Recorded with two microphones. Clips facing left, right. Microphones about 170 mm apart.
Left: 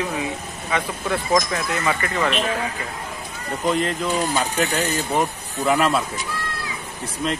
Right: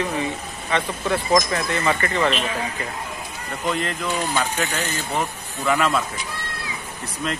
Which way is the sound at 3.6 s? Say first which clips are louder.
Left 3 dB; 40° left (ahead or behind).